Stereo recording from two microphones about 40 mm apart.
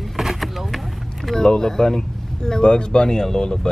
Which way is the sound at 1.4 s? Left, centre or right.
Centre.